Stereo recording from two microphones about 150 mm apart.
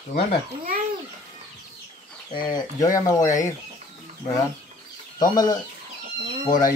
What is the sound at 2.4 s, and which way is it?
Speech, 25° left (ahead or behind).